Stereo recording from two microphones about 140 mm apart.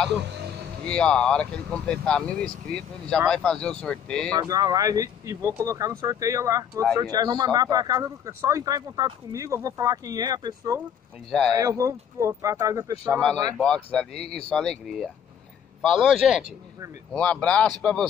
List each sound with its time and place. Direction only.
0.8 s speech: 5° left (ahead or behind)
4.3 s speech: 30° right (ahead or behind)
11.2 s speech: centre (ahead or behind)
11.5 s speech: 20° right (ahead or behind)
13.9 s speech: 5° left (ahead or behind)
17.1 s speech: 10° left (ahead or behind)